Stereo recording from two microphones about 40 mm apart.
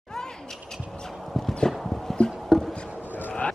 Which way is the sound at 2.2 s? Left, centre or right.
Centre.